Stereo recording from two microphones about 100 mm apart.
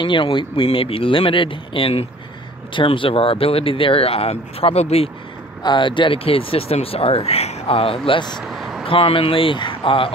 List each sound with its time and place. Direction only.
0.0 s speech: 55° left (ahead or behind); by 2.0 s 70° left (ahead or behind)
2.7 s speech: 60° left (ahead or behind); by 5.1 s 90° left
5.6 s speech: 50° left (ahead or behind); by 8.2 s 70° left (ahead or behind)
8.4 s a sound: centre (ahead or behind)
8.8 s speech: 65° left (ahead or behind)